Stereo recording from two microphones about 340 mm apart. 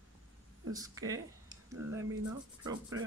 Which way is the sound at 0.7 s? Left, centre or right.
Centre.